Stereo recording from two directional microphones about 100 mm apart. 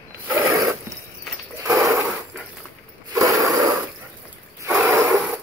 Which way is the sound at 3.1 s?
30° right (ahead or behind).